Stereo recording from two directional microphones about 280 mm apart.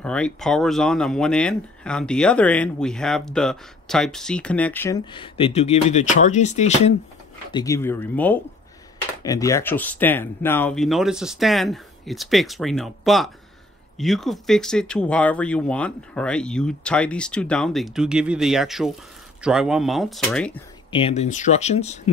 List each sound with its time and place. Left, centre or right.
0.0 s speech: centre; by 6.9 s left
7.5 s speech: centre
20.9 s speech: left